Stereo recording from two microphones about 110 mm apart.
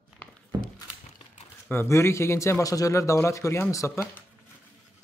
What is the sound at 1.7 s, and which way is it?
Speech, 25° left (ahead or behind).